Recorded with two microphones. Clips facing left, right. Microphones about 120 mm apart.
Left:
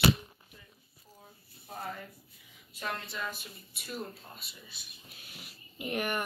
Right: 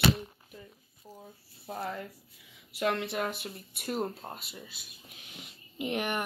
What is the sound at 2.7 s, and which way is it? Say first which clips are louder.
Speech: right 8 dB; 75° right (ahead or behind).